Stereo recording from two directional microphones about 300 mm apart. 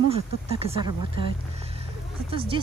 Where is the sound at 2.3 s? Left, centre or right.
Centre.